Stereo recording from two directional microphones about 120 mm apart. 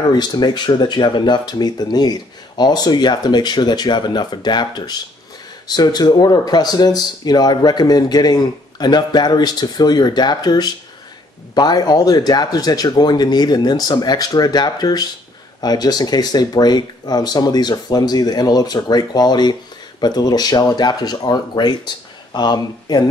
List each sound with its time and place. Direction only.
0.1 s speech: 35° left (ahead or behind)